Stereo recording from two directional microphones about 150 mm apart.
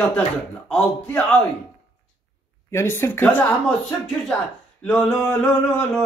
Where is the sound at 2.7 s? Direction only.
15° left (ahead or behind).